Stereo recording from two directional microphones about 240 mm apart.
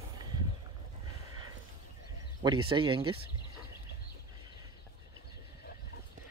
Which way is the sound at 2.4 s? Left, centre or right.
Centre.